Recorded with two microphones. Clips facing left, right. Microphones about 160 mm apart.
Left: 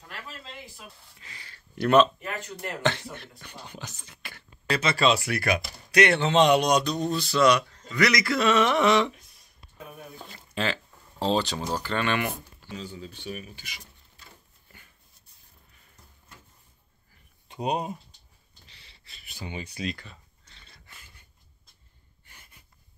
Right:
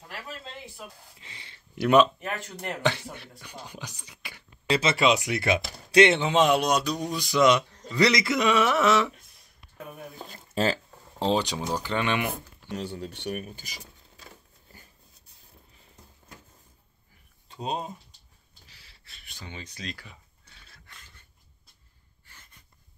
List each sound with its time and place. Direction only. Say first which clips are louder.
1.2 s speech: left 2 dB; 25° right (ahead or behind)
1.8 s a man's voice: even; 10° right (ahead or behind)
3.7 s beatboxing: even; 10° right (ahead or behind)
4.6 s speech: right 1 dB; 25° right (ahead or behind)
6.2 s a man's voice: left 2 dB; 5° right (ahead or behind)
10.3 s a sound: right 4 dB; 40° right (ahead or behind)
11.1 s speech: even; 20° right (ahead or behind)
12.7 s speech: right 4 dB; 70° right (ahead or behind)
13.5 s speech: right 3 dB; 40° right (ahead or behind)
17.5 s speech: left 4 dB; 15° left (ahead or behind)
18.7 s a sound: left 1 dB; 5° right (ahead or behind)
20.0 s a sound: left 1 dB; 10° right (ahead or behind)
22.2 s a sound: even; 15° left (ahead or behind)